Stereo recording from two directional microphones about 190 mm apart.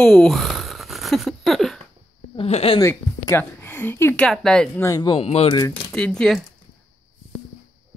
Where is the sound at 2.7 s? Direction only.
15° left (ahead or behind).